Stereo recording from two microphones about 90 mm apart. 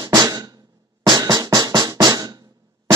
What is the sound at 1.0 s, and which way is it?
Music, 50° right (ahead or behind).